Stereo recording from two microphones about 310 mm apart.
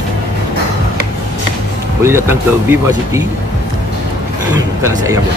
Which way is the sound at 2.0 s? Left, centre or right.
Centre.